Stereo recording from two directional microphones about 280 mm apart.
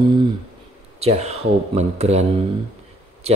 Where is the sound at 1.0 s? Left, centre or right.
Right.